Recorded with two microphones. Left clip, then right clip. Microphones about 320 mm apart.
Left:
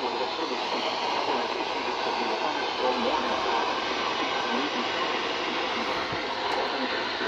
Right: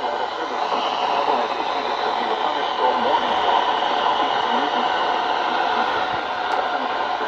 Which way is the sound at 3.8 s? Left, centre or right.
Centre.